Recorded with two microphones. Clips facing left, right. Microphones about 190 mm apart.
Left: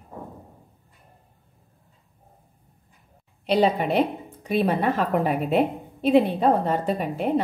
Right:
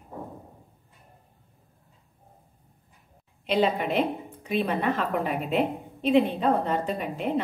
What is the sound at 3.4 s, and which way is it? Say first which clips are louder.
A woman's voice: left 3 dB; 40° left (ahead or behind).